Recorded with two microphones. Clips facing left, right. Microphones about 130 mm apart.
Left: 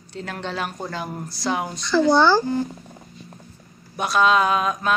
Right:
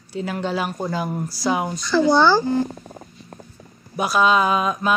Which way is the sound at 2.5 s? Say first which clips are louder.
Right 3 dB; 25° right (ahead or behind).